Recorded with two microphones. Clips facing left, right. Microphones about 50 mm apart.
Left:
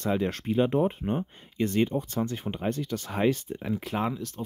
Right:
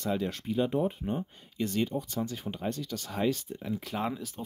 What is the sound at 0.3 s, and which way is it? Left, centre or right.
Speech, left.